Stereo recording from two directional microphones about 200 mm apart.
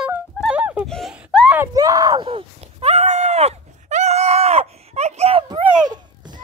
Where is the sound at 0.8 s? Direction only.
Centre (ahead or behind).